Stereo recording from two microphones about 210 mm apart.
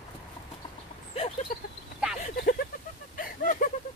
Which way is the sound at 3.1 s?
40° left (ahead or behind).